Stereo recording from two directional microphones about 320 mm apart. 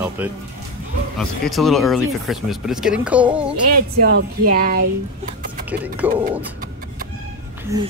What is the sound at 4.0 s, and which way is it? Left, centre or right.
Speech, right.